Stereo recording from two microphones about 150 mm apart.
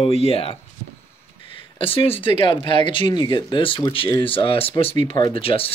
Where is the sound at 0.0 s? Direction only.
40° left (ahead or behind).